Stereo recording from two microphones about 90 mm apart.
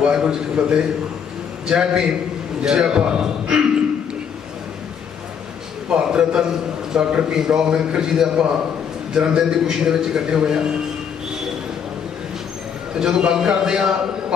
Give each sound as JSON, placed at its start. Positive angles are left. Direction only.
{"t": 0.0, "sound": "a man's voice", "side_deg": -5}
{"t": 5.9, "sound": "a man's voice", "side_deg": -10}
{"t": 13.0, "sound": "a man's voice", "side_deg": -10}